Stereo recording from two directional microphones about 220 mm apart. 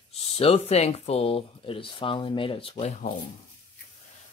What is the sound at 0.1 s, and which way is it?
Speech, 25° left (ahead or behind).